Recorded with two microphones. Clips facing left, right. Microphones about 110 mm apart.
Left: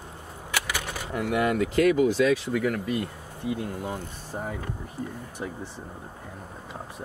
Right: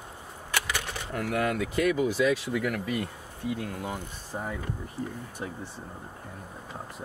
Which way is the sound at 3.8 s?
10° right (ahead or behind).